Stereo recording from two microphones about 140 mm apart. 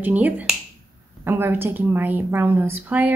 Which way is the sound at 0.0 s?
10° right (ahead or behind).